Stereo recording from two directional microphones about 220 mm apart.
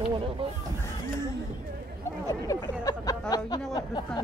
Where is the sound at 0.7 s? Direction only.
15° left (ahead or behind).